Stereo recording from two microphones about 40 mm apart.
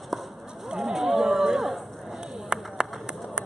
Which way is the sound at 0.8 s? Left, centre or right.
Centre.